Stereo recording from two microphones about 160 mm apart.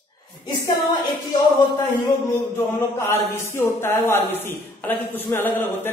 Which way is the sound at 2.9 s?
15° left (ahead or behind).